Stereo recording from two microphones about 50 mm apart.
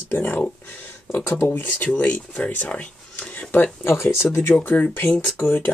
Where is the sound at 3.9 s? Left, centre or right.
Left.